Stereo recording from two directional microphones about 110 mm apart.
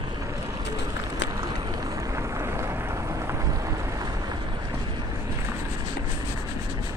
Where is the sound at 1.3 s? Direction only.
35° right (ahead or behind).